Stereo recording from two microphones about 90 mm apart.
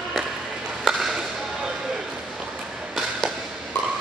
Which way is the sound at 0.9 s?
5° right (ahead or behind).